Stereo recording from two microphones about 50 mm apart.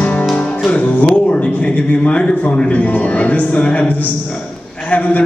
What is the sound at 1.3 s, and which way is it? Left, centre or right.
A man's voice, left.